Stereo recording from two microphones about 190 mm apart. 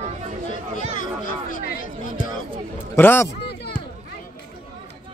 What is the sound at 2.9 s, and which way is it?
Speech, 10° left (ahead or behind).